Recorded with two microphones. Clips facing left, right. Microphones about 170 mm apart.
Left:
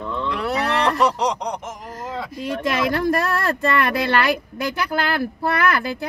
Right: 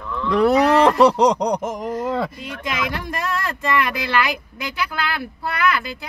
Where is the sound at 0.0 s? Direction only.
25° left (ahead or behind).